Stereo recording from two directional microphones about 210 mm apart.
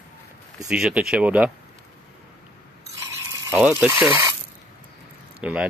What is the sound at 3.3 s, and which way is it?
Speech, 10° right (ahead or behind).